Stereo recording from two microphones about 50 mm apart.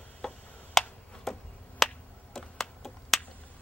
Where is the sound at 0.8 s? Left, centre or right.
Centre.